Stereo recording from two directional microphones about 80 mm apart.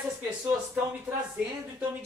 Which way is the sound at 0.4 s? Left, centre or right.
Right.